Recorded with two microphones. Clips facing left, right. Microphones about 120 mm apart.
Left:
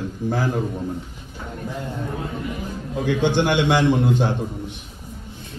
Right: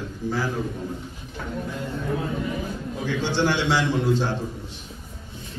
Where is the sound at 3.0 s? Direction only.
55° left (ahead or behind).